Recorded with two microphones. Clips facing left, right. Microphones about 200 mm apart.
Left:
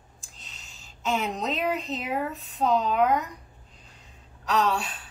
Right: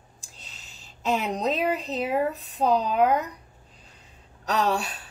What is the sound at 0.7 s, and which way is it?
A woman's voice, 35° right (ahead or behind).